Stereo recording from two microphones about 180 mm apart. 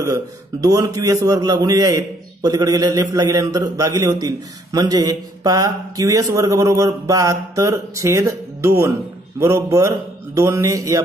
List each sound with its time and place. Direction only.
0.0 s a man's voice: 20° right (ahead or behind)